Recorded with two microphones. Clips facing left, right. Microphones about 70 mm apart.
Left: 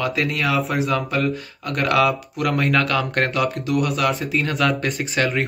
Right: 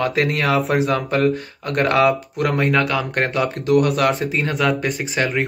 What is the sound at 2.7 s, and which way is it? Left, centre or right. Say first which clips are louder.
Speech: right 1 dB; centre.